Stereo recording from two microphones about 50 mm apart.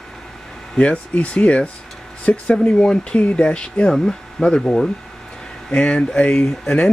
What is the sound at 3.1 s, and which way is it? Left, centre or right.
Speech, left.